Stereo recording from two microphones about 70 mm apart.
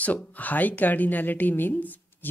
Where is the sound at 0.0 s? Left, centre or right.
Left.